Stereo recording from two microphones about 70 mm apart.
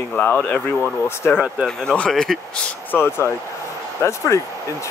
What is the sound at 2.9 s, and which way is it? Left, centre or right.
Speech, left.